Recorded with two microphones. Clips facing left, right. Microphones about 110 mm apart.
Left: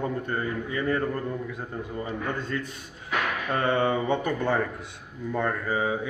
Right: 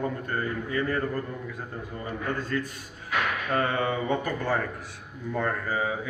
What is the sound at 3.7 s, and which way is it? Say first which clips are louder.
A man's voice: left 3 dB; 25° left (ahead or behind).